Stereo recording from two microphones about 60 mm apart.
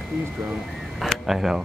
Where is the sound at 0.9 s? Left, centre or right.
Centre.